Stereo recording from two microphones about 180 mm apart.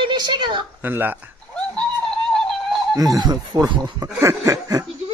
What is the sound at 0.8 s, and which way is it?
Chuckle, 10° right (ahead or behind).